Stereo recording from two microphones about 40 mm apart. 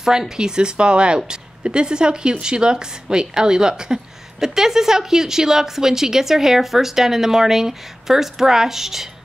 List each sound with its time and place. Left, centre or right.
0.0 s a woman's voice: centre